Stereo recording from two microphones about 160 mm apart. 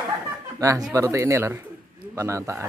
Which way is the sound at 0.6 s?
20° right (ahead or behind).